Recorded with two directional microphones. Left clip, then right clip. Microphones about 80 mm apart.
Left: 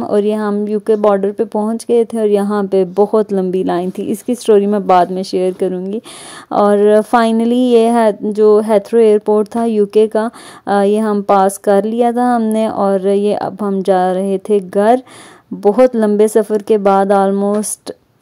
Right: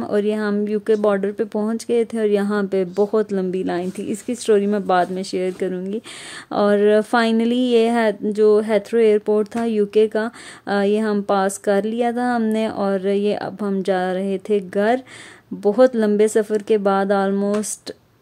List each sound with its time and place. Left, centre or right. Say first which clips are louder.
0.1 s a woman's voice: left 6 dB; left
0.5 s a woman's voice: left 5 dB; left
6.5 s a woman's voice: left 6 dB; left